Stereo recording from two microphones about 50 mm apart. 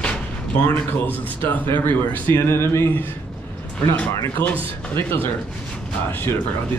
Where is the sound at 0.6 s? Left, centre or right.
Left.